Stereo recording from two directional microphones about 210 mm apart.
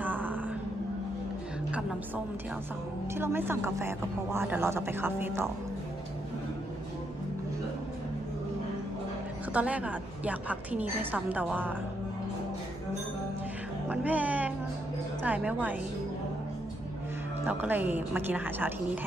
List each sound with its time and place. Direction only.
0.0 s a sound: 10° right (ahead or behind)
1.7 s a woman's voice: 5° right (ahead or behind)
9.5 s speech: 5° right (ahead or behind)
13.8 s speech: 5° right (ahead or behind)
17.5 s speech: 10° right (ahead or behind)